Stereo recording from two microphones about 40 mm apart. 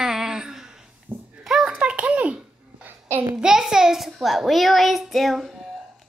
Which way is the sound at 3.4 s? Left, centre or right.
Centre.